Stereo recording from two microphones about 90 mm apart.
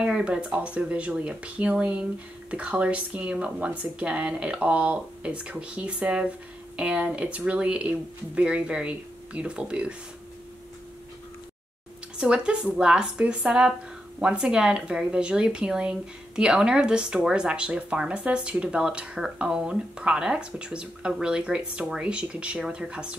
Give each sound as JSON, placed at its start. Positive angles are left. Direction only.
{"t": 0.0, "sound": "speech", "side_deg": -10}
{"t": 12.2, "sound": "speech", "side_deg": -10}